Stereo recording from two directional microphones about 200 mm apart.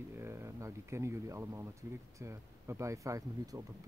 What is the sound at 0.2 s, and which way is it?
Speech, 15° right (ahead or behind).